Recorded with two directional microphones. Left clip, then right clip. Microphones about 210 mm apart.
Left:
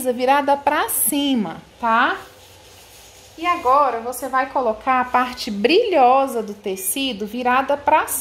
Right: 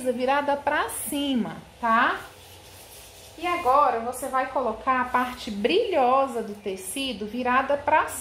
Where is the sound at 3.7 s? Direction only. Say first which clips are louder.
Left 3 dB; 55° left (ahead or behind).